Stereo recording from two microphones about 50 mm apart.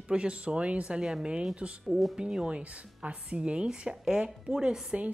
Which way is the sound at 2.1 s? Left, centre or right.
Centre.